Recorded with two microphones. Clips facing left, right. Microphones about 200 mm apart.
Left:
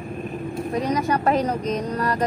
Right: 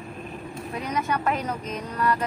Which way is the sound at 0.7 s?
35° left (ahead or behind).